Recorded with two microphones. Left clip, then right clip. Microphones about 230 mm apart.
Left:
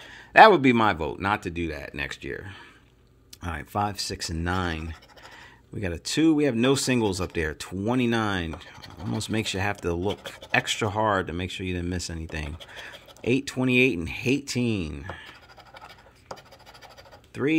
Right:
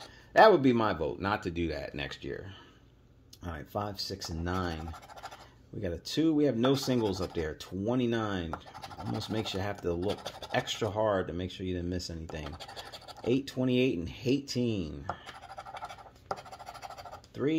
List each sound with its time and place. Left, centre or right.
0.3 s speech: left
3.4 s speech: left
17.3 s speech: left